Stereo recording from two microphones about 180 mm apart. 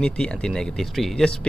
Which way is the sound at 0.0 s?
5° left (ahead or behind).